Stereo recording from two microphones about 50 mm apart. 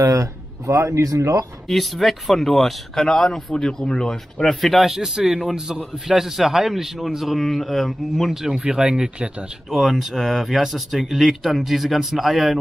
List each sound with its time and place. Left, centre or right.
0.1 s a sound: right
0.8 s speech: right
1.7 s speech: centre
4.6 s a man's voice: centre